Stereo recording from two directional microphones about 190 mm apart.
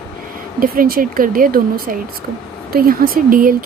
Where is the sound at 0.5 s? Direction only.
50° right (ahead or behind).